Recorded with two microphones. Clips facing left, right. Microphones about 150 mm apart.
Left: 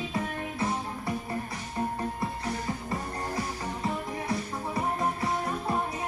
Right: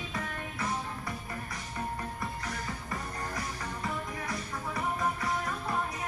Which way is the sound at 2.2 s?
30° left (ahead or behind).